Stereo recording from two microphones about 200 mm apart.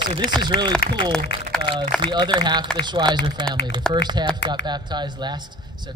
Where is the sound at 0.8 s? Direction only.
50° left (ahead or behind).